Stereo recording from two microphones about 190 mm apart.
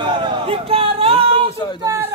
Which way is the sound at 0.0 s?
25° right (ahead or behind).